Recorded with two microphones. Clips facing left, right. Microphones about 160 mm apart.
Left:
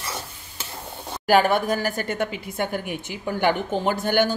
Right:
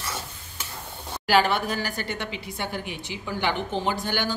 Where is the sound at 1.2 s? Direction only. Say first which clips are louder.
Left 3 dB; 45° left (ahead or behind).